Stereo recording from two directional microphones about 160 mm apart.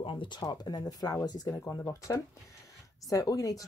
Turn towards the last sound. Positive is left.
turn(degrees=20)  # may be behind; listen again after turning